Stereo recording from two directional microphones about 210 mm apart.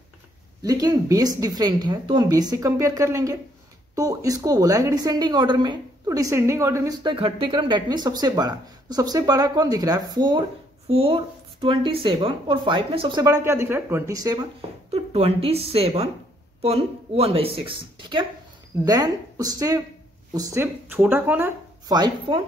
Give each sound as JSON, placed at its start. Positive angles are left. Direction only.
{"t": 0.6, "sound": "a woman's voice", "side_deg": -15}
{"t": 14.9, "sound": "a woman's voice", "side_deg": -30}